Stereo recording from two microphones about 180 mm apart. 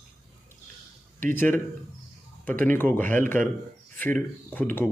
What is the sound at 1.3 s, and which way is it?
Speech, 10° left (ahead or behind).